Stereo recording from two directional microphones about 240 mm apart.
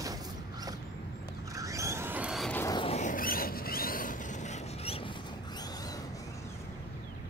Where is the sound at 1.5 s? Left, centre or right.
Centre; by 5.0 s left.